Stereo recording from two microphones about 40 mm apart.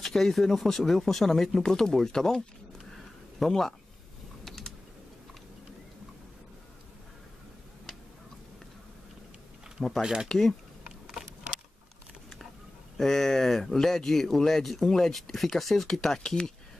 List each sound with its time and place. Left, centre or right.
0.0 s speech: centre
9.8 s speech: centre
12.9 s speech: centre